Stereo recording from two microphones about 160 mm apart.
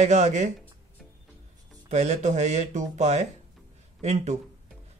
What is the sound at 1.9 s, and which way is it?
Speech, 45° right (ahead or behind).